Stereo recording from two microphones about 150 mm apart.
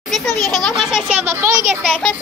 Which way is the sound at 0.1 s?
Centre (ahead or behind).